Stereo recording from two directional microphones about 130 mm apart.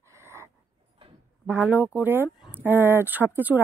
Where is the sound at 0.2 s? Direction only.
20° right (ahead or behind).